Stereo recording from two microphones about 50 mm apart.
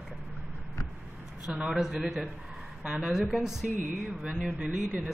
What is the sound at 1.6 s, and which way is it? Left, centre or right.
Speech, centre.